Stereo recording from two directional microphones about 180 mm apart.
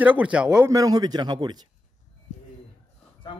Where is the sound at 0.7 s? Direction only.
20° right (ahead or behind).